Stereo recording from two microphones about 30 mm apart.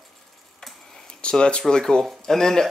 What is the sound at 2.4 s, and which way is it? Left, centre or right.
Speech, centre.